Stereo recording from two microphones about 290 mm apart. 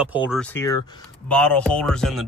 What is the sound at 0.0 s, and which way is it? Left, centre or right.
Speech, centre.